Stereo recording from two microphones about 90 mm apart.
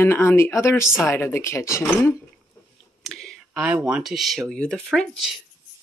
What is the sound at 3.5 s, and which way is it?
Speech, 10° right (ahead or behind).